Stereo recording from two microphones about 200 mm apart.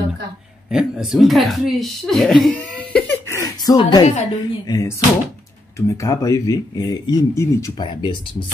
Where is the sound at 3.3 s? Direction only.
15° left (ahead or behind).